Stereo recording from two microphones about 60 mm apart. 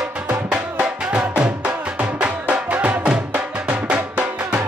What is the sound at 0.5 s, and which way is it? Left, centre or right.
Music, centre.